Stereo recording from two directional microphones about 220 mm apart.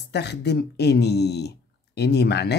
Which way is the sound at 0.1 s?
50° left (ahead or behind).